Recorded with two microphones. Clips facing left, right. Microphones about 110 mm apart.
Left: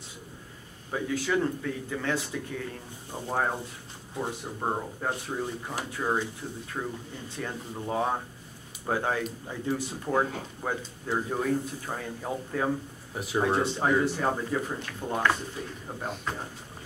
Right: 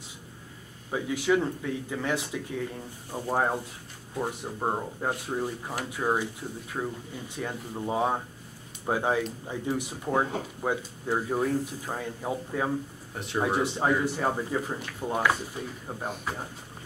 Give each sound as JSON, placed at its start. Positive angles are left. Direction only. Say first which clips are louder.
{"t": 0.9, "sound": "speech", "louder": "right 2 dB", "side_deg": -15}
{"t": 13.1, "sound": "speech", "louder": "left 3 dB", "side_deg": 5}
{"t": 13.4, "sound": "speech", "louder": "even", "side_deg": -10}